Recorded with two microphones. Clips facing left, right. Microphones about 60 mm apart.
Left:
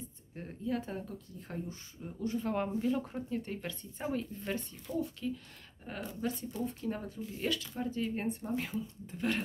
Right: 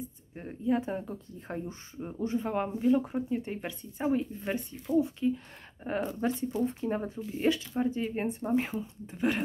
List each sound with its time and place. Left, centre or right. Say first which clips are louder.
0.4 s speech: right 7 dB; centre
2.5 s speech: right 7 dB; centre
5.9 s speech: right 7 dB; right; by 9.4 s centre